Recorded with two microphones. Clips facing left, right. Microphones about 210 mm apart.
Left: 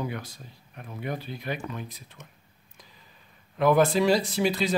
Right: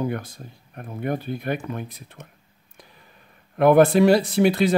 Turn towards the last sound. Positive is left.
turn(degrees=-60)  # may be behind; listen again after turning